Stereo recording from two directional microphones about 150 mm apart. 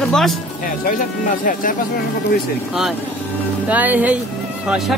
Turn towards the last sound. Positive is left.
turn(degrees=0)  # may be behind; listen again after turning